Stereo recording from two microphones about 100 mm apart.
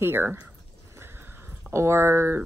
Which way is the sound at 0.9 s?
25° right (ahead or behind).